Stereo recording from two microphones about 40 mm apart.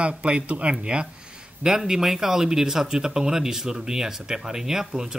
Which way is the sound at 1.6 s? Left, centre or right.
Centre.